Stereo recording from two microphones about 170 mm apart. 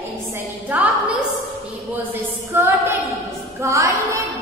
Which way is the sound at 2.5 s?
10° right (ahead or behind).